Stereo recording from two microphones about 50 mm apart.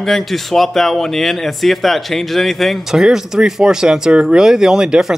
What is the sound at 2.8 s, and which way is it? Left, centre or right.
Speech, centre.